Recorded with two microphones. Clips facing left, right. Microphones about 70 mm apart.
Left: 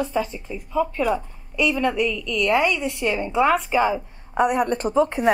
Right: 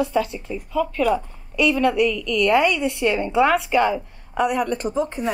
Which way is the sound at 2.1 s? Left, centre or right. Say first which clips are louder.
Right 3 dB; centre.